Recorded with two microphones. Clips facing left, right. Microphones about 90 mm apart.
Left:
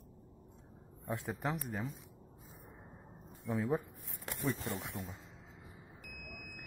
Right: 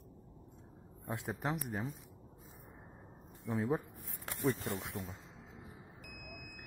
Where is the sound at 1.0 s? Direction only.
5° right (ahead or behind).